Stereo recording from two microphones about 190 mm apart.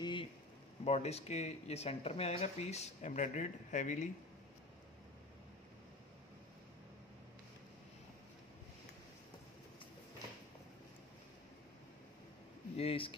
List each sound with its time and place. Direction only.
0.0 s a sound: 25° left (ahead or behind)
0.8 s speech: 35° left (ahead or behind)
12.7 s speech: 30° left (ahead or behind)